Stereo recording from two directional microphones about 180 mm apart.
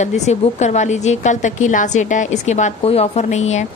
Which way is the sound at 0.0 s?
40° left (ahead or behind).